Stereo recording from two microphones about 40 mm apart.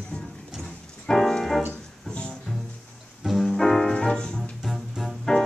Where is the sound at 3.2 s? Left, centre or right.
Centre.